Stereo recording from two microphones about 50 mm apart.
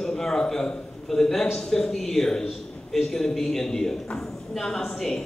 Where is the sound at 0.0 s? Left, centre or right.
Centre.